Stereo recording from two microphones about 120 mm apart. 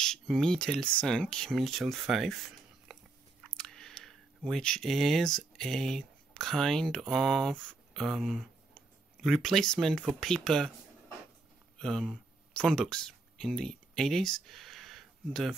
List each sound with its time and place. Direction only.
0.0 s speech: 5° left (ahead or behind)
3.5 s a sound: 5° left (ahead or behind)
4.5 s speech: 5° left (ahead or behind)
11.8 s speech: 5° left (ahead or behind)